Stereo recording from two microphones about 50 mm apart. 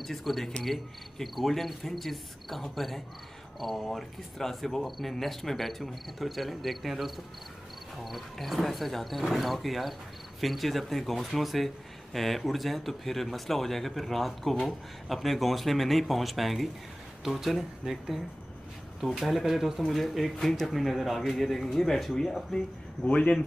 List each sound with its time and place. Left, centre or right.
0.0 s speech: centre
23.0 s a man's voice: left